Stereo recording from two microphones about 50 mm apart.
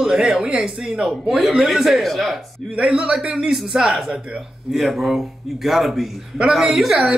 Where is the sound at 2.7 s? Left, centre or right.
Centre.